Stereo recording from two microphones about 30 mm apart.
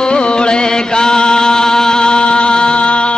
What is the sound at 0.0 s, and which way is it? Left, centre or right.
Chant, left.